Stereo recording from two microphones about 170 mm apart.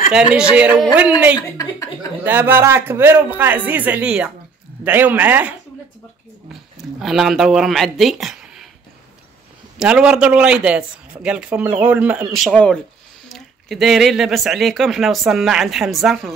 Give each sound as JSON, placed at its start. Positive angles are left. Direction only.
{"t": 0.1, "sound": "a man's voice", "side_deg": -5}
{"t": 1.3, "sound": "speech", "side_deg": 20}
{"t": 2.2, "sound": "a man's voice", "side_deg": -10}
{"t": 6.5, "sound": "speech", "side_deg": 0}
{"t": 9.8, "sound": "a man's voice", "side_deg": -5}